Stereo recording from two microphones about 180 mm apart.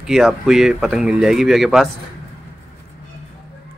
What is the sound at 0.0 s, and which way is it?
Speech, centre (ahead or behind).